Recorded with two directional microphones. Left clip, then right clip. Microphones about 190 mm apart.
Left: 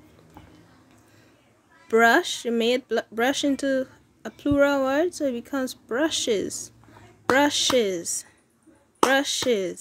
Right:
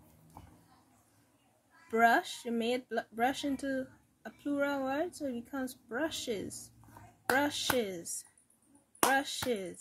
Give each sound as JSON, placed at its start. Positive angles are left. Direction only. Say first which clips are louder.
{"t": 1.9, "sound": "speech", "louder": "left 9 dB", "side_deg": 50}